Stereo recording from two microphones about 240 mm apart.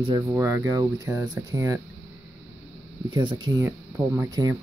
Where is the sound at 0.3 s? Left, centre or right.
Centre.